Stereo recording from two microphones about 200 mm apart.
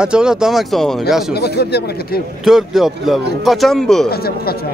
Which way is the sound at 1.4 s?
55° left (ahead or behind).